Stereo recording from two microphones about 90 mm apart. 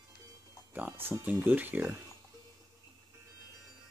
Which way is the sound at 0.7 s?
20° right (ahead or behind).